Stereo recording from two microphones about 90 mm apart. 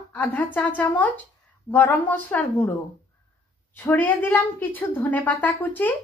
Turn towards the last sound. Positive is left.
turn(degrees=20)  # may be behind; listen again after turning